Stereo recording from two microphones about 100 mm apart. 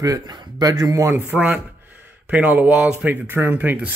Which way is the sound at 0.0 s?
40° right (ahead or behind).